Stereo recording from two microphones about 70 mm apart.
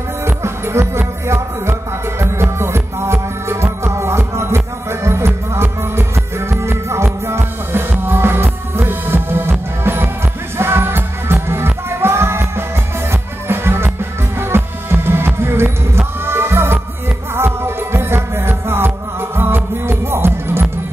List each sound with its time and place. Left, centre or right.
0.2 s music: right